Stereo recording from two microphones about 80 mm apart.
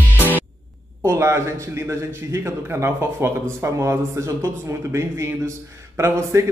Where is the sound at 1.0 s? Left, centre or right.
Right.